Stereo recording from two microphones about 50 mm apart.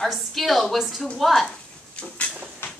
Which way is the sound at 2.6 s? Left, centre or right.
Left.